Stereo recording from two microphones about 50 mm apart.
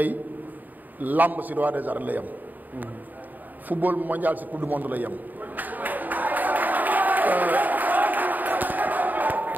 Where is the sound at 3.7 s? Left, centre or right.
Right.